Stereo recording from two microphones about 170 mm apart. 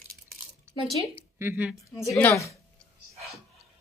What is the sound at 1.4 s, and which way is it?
Speech, 10° right (ahead or behind).